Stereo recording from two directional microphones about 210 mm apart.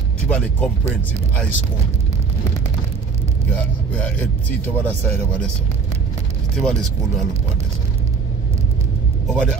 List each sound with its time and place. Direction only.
0.3 s a man's voice: 5° left (ahead or behind)
3.5 s a man's voice: 5° left (ahead or behind)
6.6 s a man's voice: 5° left (ahead or behind)
9.3 s a man's voice: 5° left (ahead or behind)